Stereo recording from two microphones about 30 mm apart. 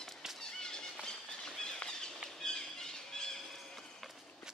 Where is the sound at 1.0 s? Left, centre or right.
Left.